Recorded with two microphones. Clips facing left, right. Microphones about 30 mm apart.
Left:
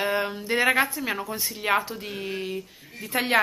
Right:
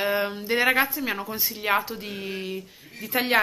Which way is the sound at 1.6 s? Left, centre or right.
Centre.